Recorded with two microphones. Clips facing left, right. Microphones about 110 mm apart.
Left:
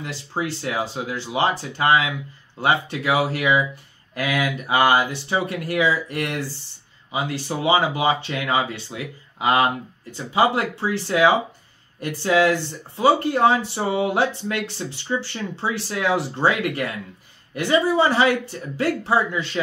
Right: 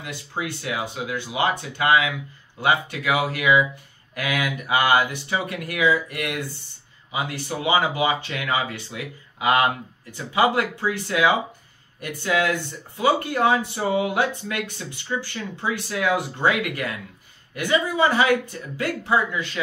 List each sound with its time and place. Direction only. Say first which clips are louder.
0.0 s speech: left 3 dB; 30° left (ahead or behind)